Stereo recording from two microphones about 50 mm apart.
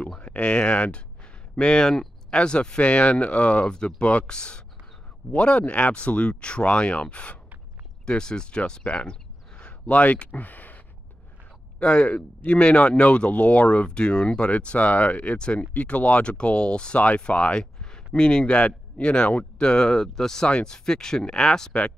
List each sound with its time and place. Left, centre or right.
0.2 s speech: left
11.8 s speech: left